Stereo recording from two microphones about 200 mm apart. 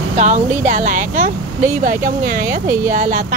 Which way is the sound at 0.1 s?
35° right (ahead or behind).